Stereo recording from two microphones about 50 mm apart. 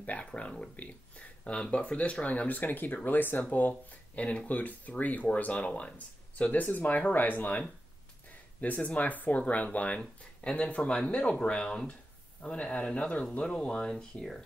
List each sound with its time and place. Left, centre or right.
0.0 s speech: left
8.7 s speech: left; by 14.4 s centre